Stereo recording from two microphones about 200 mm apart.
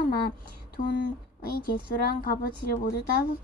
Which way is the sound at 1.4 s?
50° left (ahead or behind).